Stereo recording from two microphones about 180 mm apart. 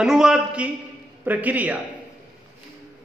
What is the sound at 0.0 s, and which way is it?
A man's voice, 5° right (ahead or behind).